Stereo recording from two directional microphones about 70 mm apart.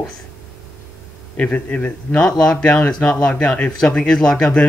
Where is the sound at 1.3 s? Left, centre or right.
Centre.